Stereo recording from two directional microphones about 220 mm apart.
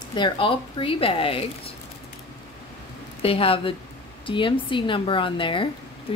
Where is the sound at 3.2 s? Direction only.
25° left (ahead or behind).